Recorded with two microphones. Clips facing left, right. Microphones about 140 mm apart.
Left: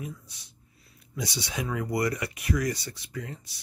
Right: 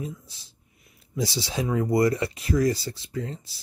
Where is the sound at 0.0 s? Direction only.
25° right (ahead or behind).